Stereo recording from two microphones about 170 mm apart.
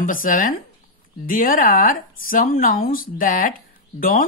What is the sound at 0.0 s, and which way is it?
Speech, 55° left (ahead or behind).